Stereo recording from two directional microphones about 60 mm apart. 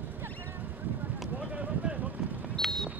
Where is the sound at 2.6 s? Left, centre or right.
Centre.